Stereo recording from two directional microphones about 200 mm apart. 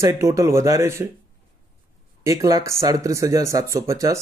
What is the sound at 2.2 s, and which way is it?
Speech, 15° right (ahead or behind).